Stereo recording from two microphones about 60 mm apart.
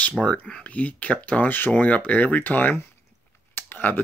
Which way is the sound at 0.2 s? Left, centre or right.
Centre.